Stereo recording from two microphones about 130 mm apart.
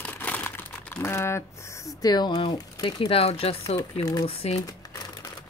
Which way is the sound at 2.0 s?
30° left (ahead or behind).